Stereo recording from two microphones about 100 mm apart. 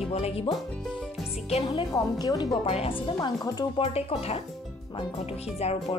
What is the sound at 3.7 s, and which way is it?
A woman's voice, 80° left.